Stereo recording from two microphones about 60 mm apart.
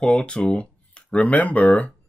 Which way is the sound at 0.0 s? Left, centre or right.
Centre.